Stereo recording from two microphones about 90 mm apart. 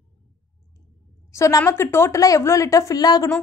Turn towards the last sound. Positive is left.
turn(degrees=45)  # may be behind; listen again after turning